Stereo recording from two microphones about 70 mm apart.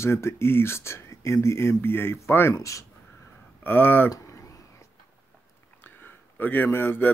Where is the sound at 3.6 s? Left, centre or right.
Left.